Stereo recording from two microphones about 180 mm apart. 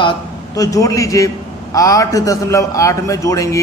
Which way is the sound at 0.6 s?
20° left (ahead or behind).